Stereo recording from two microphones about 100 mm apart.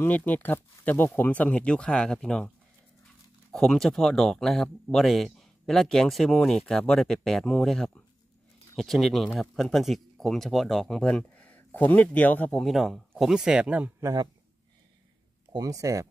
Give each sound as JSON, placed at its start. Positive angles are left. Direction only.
{"t": 0.0, "sound": "speech", "side_deg": 15}
{"t": 3.5, "sound": "speech", "side_deg": 5}
{"t": 12.5, "sound": "speech", "side_deg": 0}
{"t": 15.5, "sound": "speech", "side_deg": -35}